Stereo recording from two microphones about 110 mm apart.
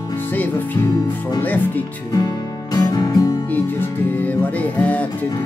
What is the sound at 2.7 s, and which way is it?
Music, 35° left (ahead or behind).